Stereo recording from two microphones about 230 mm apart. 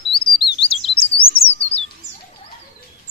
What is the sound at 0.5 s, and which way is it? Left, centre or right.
Chirp, left.